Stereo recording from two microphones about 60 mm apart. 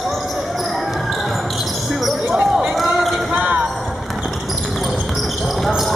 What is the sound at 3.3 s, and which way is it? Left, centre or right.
Basketball bounce, right.